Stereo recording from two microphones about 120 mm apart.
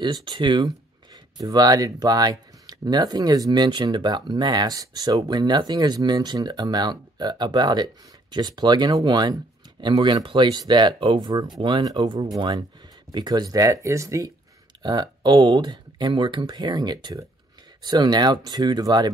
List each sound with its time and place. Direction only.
0.0 s speech: 40° right (ahead or behind)
14.8 s speech: 35° right (ahead or behind)